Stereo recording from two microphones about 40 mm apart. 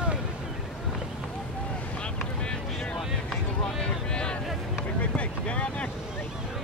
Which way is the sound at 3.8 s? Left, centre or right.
Left.